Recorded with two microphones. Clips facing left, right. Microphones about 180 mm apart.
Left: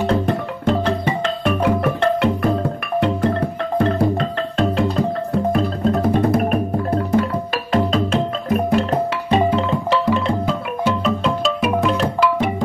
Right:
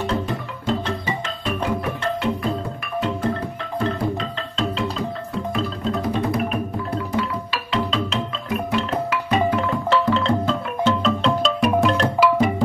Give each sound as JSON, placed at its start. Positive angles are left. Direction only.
{"t": 0.0, "sound": "music", "side_deg": 60}
{"t": 9.1, "sound": "music", "side_deg": 25}
{"t": 9.8, "sound": "music", "side_deg": 15}